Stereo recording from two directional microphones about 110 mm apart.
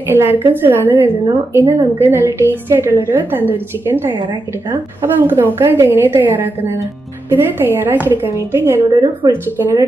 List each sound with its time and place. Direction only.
0.1 s a woman's voice: 20° right (ahead or behind)
9.2 s speech: 30° right (ahead or behind)